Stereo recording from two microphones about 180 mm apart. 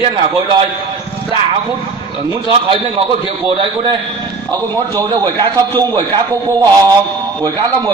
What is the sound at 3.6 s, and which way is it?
A man's voice, 30° right (ahead or behind).